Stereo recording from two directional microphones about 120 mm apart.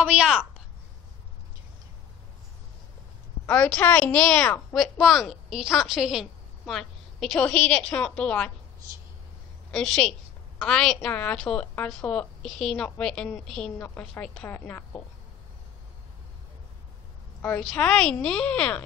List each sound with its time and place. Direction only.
0.0 s a child's voice: 5° right (ahead or behind)
3.4 s a woman's voice: 10° left (ahead or behind)
9.7 s a child's voice: 5° left (ahead or behind)
13.7 s a woman's voice: 15° left (ahead or behind)
17.6 s a woman's voice: 5° left (ahead or behind)